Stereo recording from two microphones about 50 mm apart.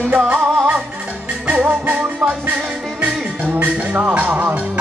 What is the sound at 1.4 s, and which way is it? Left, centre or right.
Music, right.